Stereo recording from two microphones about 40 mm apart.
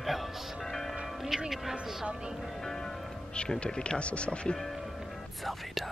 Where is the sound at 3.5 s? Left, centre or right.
Left.